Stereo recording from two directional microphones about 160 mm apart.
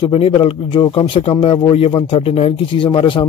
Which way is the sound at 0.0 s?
35° left (ahead or behind).